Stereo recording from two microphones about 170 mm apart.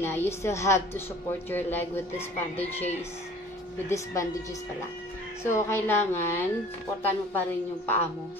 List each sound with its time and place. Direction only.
0.0 s speech: 15° left (ahead or behind)
3.9 s speech: 20° left (ahead or behind)
5.4 s speech: 15° left (ahead or behind)